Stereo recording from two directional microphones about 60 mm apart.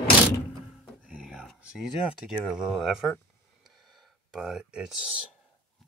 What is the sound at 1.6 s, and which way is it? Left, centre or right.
Speech, centre.